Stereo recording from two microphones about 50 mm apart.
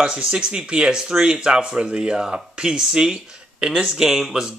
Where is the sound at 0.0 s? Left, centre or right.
Centre.